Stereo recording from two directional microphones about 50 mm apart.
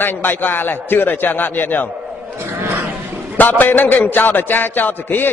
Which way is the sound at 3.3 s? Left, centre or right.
Left.